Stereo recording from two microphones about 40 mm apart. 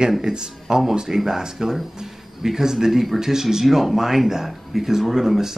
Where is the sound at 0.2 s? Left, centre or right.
Centre.